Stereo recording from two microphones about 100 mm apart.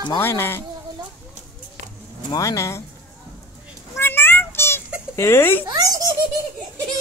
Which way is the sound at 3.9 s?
20° left (ahead or behind).